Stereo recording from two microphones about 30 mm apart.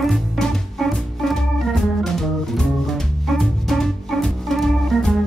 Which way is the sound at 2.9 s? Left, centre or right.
Centre.